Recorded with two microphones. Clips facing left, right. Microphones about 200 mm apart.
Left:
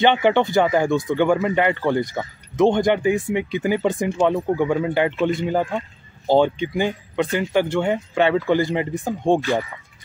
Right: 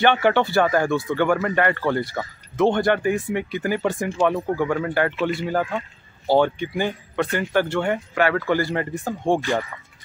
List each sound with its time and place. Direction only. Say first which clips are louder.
0.0 s speech: left 2 dB; 20° left (ahead or behind)